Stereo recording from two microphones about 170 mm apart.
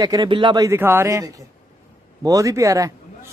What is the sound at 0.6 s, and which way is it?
A man's voice, 15° right (ahead or behind).